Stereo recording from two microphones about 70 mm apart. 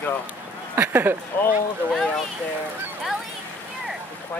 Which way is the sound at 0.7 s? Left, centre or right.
Right.